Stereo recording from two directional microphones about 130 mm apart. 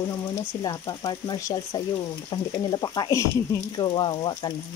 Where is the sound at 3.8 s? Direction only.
40° left (ahead or behind).